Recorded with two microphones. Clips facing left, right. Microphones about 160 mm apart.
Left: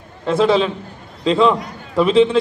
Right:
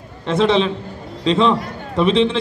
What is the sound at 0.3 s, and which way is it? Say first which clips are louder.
A man's voice: left 1 dB; 25° right (ahead or behind).